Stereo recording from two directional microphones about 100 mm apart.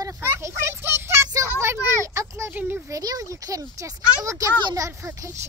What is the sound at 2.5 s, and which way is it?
Speech, 15° right (ahead or behind).